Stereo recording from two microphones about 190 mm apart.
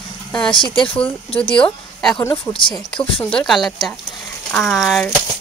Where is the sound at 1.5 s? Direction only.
5° left (ahead or behind).